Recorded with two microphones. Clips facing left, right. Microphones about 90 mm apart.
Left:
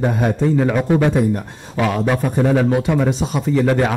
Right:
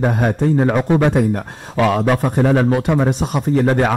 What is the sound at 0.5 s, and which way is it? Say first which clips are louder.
Speech: right 1 dB; 35° right (ahead or behind).